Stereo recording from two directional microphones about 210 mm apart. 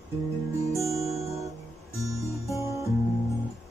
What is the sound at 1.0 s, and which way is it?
Guitar, 30° right (ahead or behind).